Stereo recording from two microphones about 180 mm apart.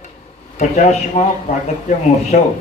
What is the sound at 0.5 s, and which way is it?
Speech, 40° left (ahead or behind).